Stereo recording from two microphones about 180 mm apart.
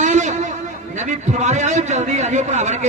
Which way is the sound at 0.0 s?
40° right (ahead or behind).